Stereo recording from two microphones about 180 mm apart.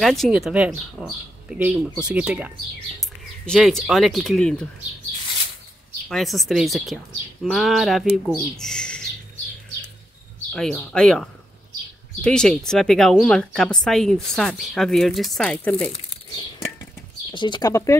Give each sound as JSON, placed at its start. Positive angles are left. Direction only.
{"t": 0.0, "sound": "speech", "side_deg": 0}
{"t": 6.0, "sound": "speech", "side_deg": 0}
{"t": 10.5, "sound": "speech", "side_deg": 5}
{"t": 15.9, "sound": "a sound", "side_deg": 30}
{"t": 17.3, "sound": "speech", "side_deg": 25}